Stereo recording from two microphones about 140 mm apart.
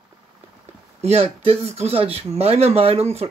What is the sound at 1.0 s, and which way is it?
Speech, 45° right (ahead or behind).